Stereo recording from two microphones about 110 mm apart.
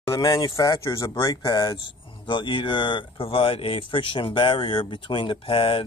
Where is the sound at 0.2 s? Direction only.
35° left (ahead or behind).